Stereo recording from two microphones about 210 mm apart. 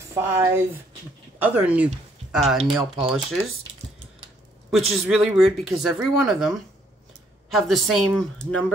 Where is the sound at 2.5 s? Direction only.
25° right (ahead or behind).